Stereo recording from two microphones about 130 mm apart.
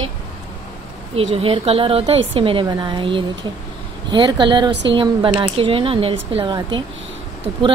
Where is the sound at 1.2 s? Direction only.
50° right (ahead or behind).